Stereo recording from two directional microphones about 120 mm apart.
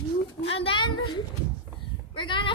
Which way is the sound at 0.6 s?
45° left (ahead or behind).